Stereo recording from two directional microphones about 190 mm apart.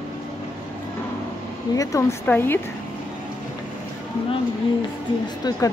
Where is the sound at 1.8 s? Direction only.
15° left (ahead or behind).